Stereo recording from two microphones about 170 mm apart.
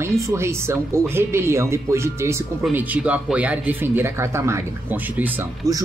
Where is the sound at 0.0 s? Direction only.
15° right (ahead or behind).